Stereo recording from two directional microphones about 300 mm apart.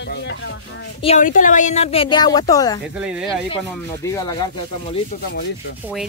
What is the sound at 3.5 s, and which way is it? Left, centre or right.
Speech, centre.